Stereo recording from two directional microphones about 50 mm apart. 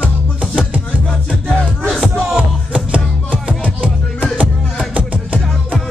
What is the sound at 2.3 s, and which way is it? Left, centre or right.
Music, right.